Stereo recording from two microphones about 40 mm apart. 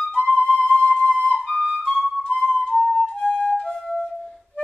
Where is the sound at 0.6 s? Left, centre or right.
Left.